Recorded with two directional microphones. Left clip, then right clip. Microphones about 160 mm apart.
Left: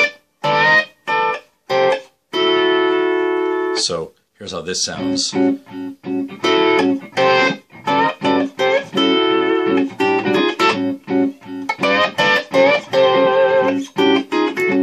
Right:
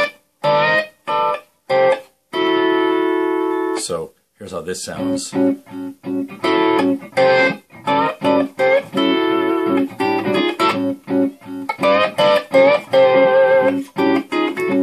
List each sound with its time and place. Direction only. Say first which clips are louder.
0.0 s music: left 1 dB; 45° right (ahead or behind)
4.5 s speech: left 3 dB; 5° left (ahead or behind)
5.3 s music: even; 45° right (ahead or behind)